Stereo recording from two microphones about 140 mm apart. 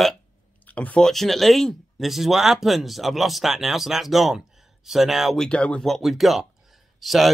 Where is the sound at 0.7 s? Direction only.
10° left (ahead or behind).